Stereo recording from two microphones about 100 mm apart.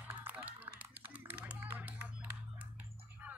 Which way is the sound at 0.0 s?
15° right (ahead or behind).